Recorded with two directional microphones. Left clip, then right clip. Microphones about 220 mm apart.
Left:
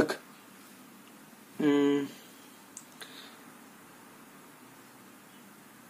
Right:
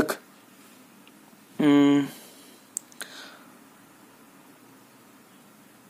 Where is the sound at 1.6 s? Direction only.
40° right (ahead or behind).